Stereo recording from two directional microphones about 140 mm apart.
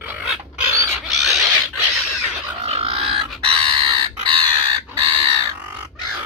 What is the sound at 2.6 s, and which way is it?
Chicken, 45° right (ahead or behind).